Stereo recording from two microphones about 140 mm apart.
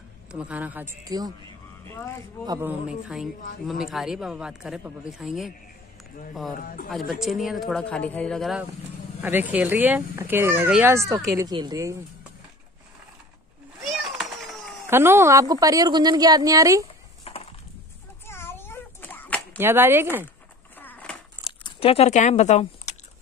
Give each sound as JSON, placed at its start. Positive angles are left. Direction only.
{"t": 0.3, "sound": "speech", "side_deg": -10}
{"t": 1.0, "sound": "a woman's voice", "side_deg": -25}
{"t": 1.9, "sound": "speech", "side_deg": 15}
{"t": 2.6, "sound": "speech", "side_deg": -5}
{"t": 7.1, "sound": "speech", "side_deg": 0}
{"t": 9.2, "sound": "a woman's voice", "side_deg": -15}
{"t": 13.8, "sound": "a sound", "side_deg": 0}
{"t": 14.9, "sound": "a woman's voice", "side_deg": -15}
{"t": 16.8, "sound": "a sound", "side_deg": 45}
{"t": 18.2, "sound": "a sound", "side_deg": 15}
{"t": 19.6, "sound": "speech", "side_deg": -15}
{"t": 20.8, "sound": "biting", "side_deg": 10}
{"t": 21.6, "sound": "speech", "side_deg": 45}